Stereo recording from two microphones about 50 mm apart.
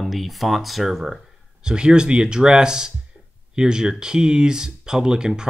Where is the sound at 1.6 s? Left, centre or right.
Centre.